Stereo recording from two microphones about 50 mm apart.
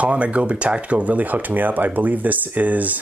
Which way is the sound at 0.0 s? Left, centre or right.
Right.